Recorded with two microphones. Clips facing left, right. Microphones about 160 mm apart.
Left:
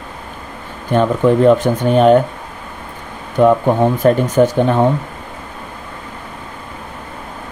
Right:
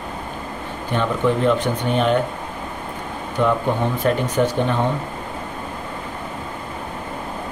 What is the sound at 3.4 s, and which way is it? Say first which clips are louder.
Speech: left 8 dB; 45° left (ahead or behind).